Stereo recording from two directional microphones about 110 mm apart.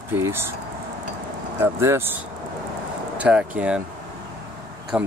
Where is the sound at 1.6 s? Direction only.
25° right (ahead or behind).